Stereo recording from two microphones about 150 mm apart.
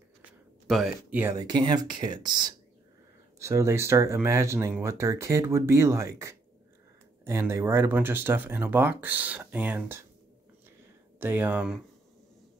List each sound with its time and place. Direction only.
0.7 s speech: centre (ahead or behind)
1.1 s speech: 15° right (ahead or behind)
1.4 s speech: 30° right (ahead or behind); by 10.0 s 15° right (ahead or behind)
11.1 s speech: 15° right (ahead or behind)